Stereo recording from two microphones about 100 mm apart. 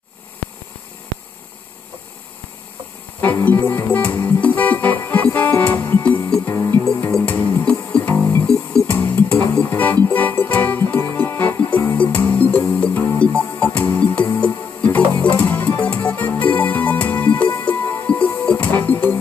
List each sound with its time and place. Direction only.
3.2 s music: 20° left (ahead or behind)